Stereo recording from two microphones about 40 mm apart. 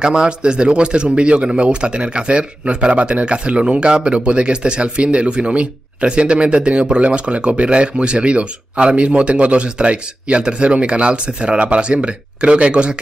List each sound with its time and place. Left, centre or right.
0.0 s speech: centre